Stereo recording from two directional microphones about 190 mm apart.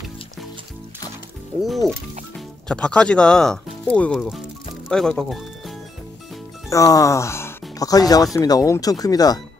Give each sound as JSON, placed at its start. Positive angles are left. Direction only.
{"t": 1.6, "sound": "speech", "side_deg": 0}
{"t": 6.7, "sound": "speech", "side_deg": 15}